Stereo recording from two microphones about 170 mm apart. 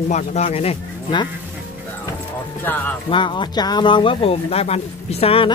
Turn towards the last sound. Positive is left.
turn(degrees=35)  # may be behind; listen again after turning